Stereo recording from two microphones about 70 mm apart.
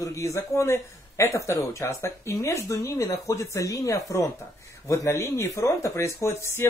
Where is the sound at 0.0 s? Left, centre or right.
Left.